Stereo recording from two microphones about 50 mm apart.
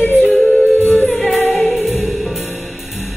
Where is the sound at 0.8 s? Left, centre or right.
Left.